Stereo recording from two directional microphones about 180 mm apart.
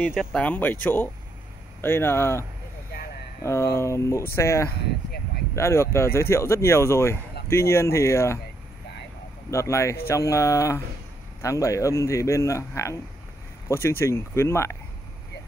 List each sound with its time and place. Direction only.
0.0 s a man's voice: centre (ahead or behind)
3.4 s a man's voice: 15° left (ahead or behind)
4.6 s speech: 60° left (ahead or behind)
5.6 s a man's voice: 15° left (ahead or behind)
9.5 s a man's voice: 15° left (ahead or behind)